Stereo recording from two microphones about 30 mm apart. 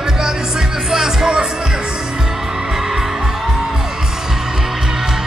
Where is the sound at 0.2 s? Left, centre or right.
Centre.